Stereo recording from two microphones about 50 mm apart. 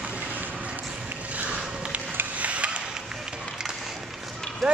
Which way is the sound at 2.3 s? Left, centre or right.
Right.